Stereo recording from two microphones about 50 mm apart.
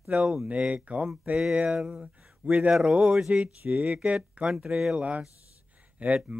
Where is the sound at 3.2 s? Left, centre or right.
Centre.